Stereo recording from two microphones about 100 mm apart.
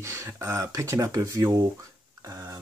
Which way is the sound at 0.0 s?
30° right (ahead or behind).